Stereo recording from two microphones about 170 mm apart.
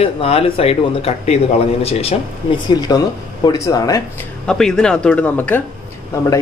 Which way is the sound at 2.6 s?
25° left (ahead or behind).